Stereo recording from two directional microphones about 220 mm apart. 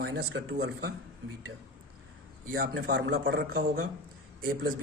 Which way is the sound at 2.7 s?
50° right (ahead or behind).